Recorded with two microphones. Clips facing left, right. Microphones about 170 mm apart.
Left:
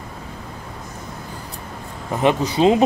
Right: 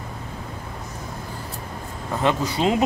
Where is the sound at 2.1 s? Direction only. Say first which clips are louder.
Left 4 dB; 20° left (ahead or behind).